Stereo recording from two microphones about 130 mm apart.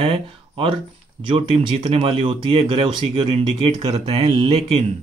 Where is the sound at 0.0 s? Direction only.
45° right (ahead or behind).